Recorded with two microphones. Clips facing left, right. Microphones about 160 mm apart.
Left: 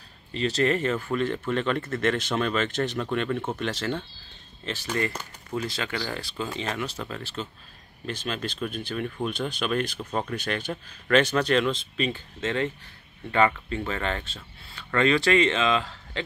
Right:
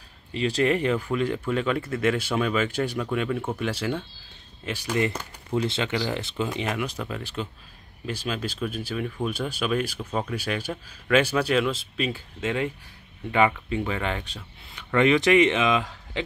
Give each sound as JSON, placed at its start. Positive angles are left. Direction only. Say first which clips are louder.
{"t": 0.3, "sound": "speech", "louder": "right 1 dB", "side_deg": -10}
{"t": 5.6, "sound": "speech", "louder": "right 5 dB", "side_deg": -25}